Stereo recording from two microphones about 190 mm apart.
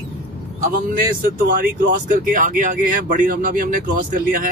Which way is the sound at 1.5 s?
45° right (ahead or behind).